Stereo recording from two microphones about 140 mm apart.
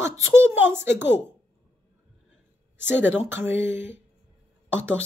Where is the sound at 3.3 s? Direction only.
15° right (ahead or behind).